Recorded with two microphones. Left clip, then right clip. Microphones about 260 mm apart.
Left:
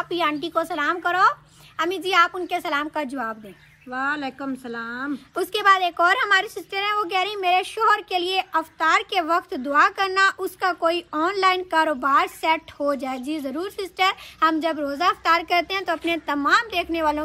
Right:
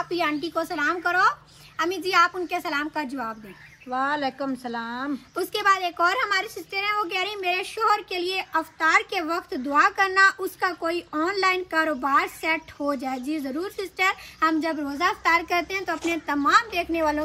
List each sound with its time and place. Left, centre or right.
0.1 s a woman's voice: centre
3.9 s speech: centre
5.3 s a woman's voice: centre